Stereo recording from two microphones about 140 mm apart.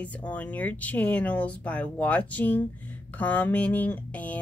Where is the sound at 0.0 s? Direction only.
10° left (ahead or behind).